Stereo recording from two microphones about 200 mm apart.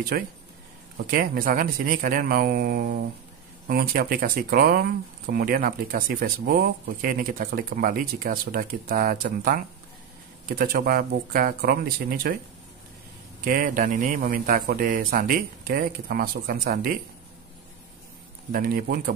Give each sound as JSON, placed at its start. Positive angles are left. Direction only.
{"t": 0.1, "sound": "speech", "side_deg": -50}
{"t": 13.4, "sound": "speech", "side_deg": -45}
{"t": 18.5, "sound": "speech", "side_deg": -45}